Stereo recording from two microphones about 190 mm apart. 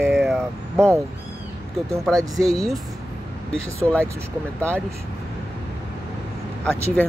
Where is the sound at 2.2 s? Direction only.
20° right (ahead or behind).